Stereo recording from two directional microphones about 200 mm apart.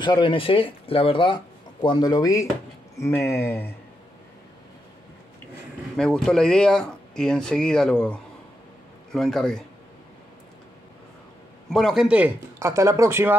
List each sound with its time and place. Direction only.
0.0 s speech: 25° left (ahead or behind)
5.9 s speech: 5° left (ahead or behind)
11.7 s speech: centre (ahead or behind)